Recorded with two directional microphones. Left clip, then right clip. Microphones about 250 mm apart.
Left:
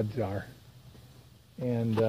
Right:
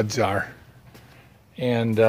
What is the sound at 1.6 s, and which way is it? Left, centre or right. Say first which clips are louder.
Speech: right 9 dB; centre.